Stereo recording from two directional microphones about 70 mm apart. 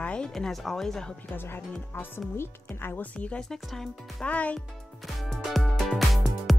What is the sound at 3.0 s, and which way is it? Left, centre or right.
Speech, centre.